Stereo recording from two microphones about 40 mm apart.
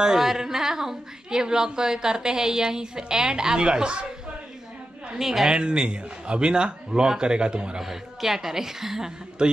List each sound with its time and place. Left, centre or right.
0.0 s speech: centre; by 4.1 s right
5.2 s speech: centre
5.5 s a man's voice: right
7.8 s speech: centre
9.4 s a man's voice: right